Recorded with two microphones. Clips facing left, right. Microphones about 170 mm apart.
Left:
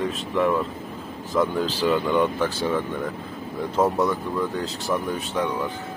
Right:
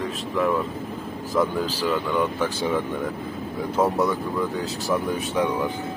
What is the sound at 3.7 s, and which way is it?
Speech, centre (ahead or behind).